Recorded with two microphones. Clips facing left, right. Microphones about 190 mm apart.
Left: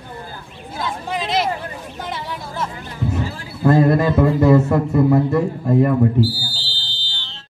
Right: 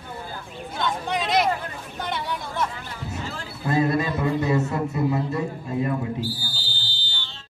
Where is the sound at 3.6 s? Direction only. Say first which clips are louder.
Left 8 dB; 55° left (ahead or behind).